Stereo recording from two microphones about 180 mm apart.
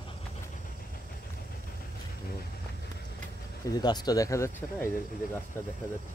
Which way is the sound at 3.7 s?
20° left (ahead or behind).